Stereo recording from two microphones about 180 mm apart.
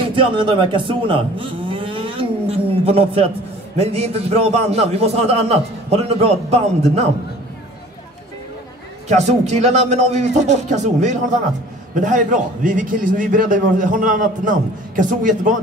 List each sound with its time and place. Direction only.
0.1 s a man's voice: 30° right (ahead or behind)
9.1 s a man's voice: 40° right (ahead or behind)